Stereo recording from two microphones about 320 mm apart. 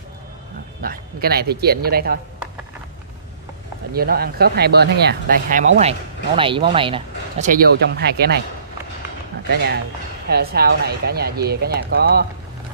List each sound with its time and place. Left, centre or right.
0.8 s speech: right
3.9 s speech: right
9.5 s speech: right